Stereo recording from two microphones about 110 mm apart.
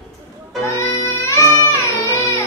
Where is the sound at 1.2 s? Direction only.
25° left (ahead or behind).